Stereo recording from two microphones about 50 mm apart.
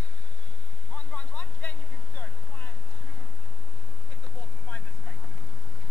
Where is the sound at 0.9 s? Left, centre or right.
Left.